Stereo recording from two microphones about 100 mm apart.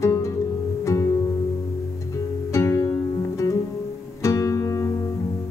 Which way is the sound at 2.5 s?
25° left (ahead or behind).